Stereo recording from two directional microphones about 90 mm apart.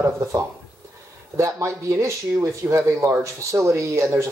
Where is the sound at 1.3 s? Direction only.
35° right (ahead or behind).